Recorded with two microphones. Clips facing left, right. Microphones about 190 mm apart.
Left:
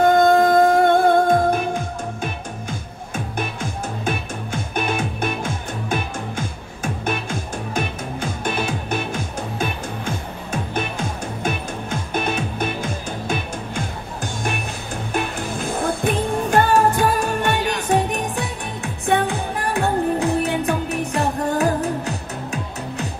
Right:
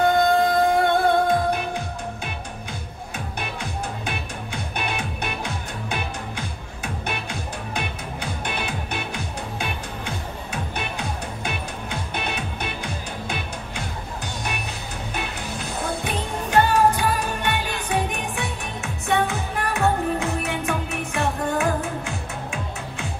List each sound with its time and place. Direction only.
0.0 s music: 45° left (ahead or behind)
4.0 s music: 45° left (ahead or behind)